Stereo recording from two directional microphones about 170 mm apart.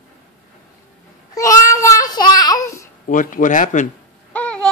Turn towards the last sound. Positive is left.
turn(degrees=5)  # may be behind; listen again after turning